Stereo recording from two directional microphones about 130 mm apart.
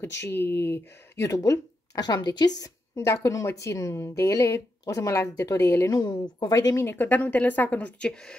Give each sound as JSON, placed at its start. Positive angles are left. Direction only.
{"t": 0.0, "sound": "speech", "side_deg": 15}